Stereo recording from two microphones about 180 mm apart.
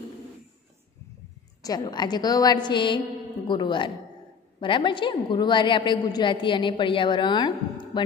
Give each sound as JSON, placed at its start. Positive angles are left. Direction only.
{"t": 1.6, "sound": "a woman's voice", "side_deg": 20}